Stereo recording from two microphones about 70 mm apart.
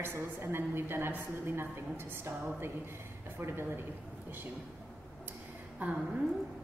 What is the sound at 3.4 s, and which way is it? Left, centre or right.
Speech, right.